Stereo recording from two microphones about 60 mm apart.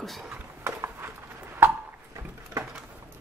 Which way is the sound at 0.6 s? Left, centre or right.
Right.